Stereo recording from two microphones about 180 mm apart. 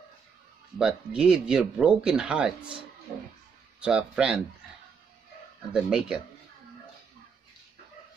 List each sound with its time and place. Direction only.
0.7 s speech: 5° right (ahead or behind)
3.8 s speech: 5° right (ahead or behind)
5.7 s speech: 5° right (ahead or behind)